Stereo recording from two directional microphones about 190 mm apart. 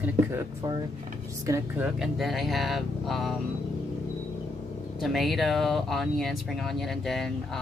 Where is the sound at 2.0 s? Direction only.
Centre (ahead or behind).